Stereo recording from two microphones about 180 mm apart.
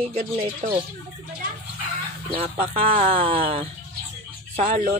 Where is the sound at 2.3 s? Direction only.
30° right (ahead or behind).